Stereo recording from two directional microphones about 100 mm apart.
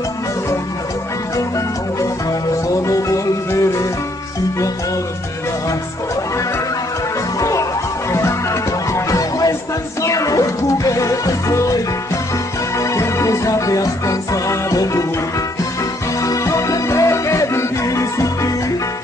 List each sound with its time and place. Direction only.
2.7 s music: 30° left (ahead or behind)
7.3 s music: 30° left (ahead or behind)
16.2 s music: 30° left (ahead or behind)